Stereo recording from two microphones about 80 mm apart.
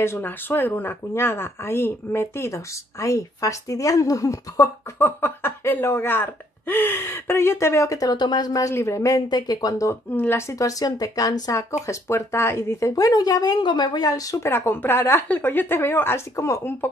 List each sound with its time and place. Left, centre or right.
0.0 s speech: left
8.2 s speech: left
8.6 s speech: left
9.3 s speech: left
10.1 s speech: left
10.6 s speech: left
11.8 s speech: left
12.9 s speech: left
14.5 s speech: left